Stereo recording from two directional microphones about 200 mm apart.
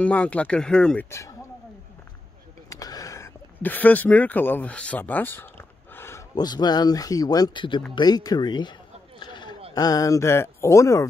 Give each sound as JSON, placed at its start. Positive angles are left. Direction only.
{"t": 0.0, "sound": "speech", "side_deg": 5}
{"t": 2.7, "sound": "speech", "side_deg": 15}
{"t": 9.2, "sound": "a sound", "side_deg": 20}
{"t": 9.8, "sound": "speech", "side_deg": 20}